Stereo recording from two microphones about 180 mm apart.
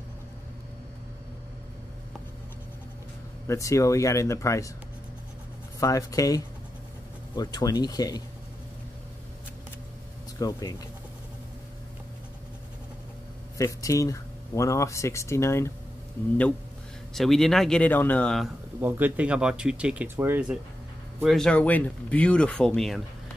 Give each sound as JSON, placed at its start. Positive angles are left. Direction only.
{"t": 3.4, "sound": "speech", "side_deg": 15}
{"t": 5.8, "sound": "speech", "side_deg": 20}
{"t": 10.4, "sound": "speech", "side_deg": 20}
{"t": 13.6, "sound": "speech", "side_deg": 20}
{"t": 17.1, "sound": "speech", "side_deg": 0}
{"t": 18.8, "sound": "speech", "side_deg": -10}
{"t": 21.2, "sound": "speech", "side_deg": 0}